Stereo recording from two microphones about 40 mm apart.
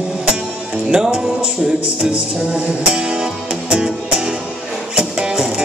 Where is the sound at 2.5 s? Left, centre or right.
Right.